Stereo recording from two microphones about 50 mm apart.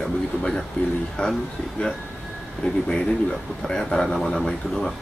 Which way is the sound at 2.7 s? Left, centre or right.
Centre.